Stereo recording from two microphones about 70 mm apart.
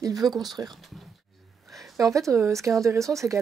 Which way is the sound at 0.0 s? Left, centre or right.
Right.